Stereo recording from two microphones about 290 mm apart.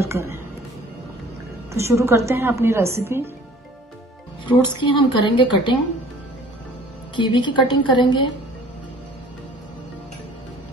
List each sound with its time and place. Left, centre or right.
0.0 s a woman's voice: centre
1.7 s a woman's voice: centre
4.5 s a woman's voice: centre
7.2 s a woman's voice: centre